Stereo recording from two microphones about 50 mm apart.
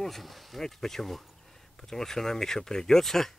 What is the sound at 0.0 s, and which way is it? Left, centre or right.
Speech, centre.